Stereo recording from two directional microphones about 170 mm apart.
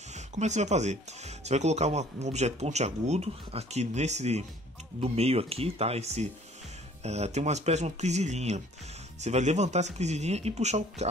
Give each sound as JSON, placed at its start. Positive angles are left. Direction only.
{"t": 0.1, "sound": "speech", "side_deg": -45}